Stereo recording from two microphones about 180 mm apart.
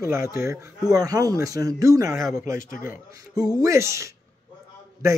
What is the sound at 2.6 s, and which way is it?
Speech, 45° left (ahead or behind).